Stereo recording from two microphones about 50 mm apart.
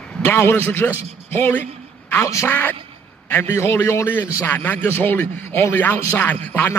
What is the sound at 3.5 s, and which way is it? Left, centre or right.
Speech, left.